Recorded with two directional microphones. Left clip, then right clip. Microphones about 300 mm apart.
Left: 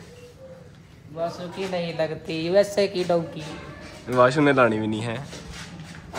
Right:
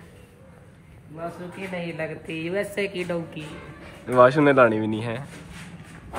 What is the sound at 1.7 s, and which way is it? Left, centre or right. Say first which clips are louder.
A woman's voice: left 5 dB; centre.